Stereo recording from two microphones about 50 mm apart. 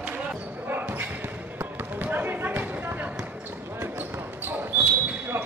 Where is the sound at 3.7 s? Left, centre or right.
Right.